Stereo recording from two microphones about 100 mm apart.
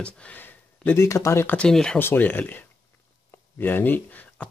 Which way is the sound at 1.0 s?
30° left (ahead or behind).